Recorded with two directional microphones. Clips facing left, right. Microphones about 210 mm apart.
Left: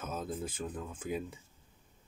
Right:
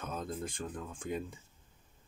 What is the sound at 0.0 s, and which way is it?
Speech, 5° left (ahead or behind).